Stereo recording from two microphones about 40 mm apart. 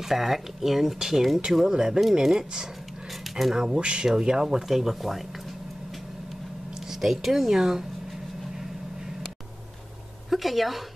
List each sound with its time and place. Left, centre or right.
0.0 s speech: centre
4.5 s speech: centre
6.9 s speech: centre
10.3 s speech: centre